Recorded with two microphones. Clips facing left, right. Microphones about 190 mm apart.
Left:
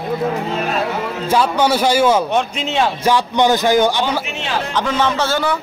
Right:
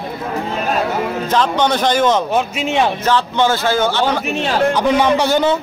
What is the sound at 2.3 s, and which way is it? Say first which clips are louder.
Speech: right 1 dB; 10° right (ahead or behind).